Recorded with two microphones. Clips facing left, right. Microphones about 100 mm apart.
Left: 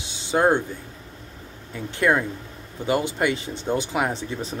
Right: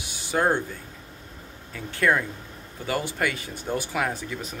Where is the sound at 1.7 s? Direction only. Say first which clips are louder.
Left 2 dB; 20° left (ahead or behind).